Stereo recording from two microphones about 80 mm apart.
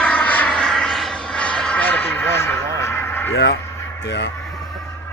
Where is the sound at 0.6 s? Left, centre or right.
Centre; by 3.3 s left.